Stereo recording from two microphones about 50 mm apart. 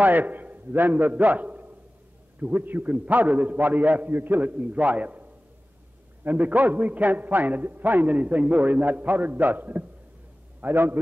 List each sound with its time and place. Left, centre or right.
0.0 s a man's voice: right